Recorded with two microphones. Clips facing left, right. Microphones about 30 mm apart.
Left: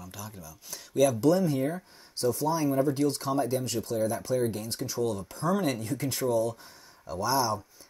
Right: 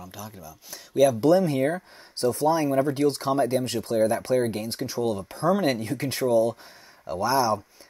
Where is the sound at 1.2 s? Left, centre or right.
Right.